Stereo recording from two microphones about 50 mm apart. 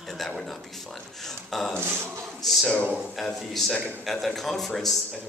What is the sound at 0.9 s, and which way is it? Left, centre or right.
Speech, centre.